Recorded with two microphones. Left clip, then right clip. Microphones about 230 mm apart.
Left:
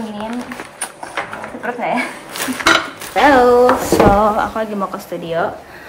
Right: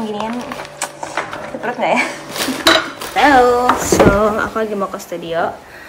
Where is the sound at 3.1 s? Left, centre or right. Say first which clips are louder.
Left 1 dB; centre.